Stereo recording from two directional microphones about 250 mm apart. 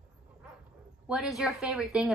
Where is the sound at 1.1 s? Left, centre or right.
Centre.